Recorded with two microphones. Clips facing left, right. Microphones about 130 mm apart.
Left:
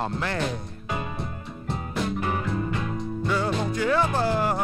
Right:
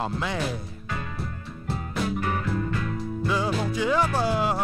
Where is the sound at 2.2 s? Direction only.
20° left (ahead or behind).